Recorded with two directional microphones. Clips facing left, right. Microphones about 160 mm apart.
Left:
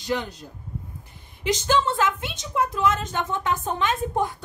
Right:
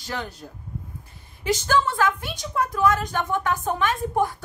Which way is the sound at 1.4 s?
20° left (ahead or behind).